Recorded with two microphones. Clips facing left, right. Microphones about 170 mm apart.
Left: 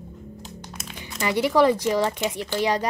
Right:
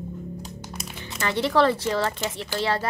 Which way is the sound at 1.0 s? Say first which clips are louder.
Left 2 dB; 10° left (ahead or behind).